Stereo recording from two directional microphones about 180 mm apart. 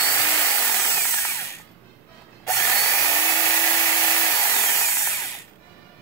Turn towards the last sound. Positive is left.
turn(degrees=15)  # may be behind; listen again after turning